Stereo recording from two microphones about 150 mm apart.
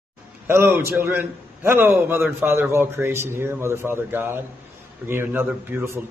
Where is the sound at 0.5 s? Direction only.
15° right (ahead or behind).